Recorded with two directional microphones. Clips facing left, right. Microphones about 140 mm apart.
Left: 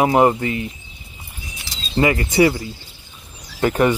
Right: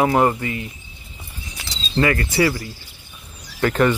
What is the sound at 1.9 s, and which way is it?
Speech, 15° left (ahead or behind).